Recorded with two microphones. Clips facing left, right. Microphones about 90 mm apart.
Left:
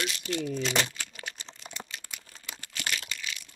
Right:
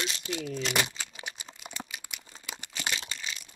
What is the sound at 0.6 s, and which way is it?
Speech, 5° right (ahead or behind).